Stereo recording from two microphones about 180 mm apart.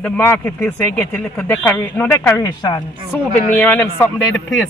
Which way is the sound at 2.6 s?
25° left (ahead or behind).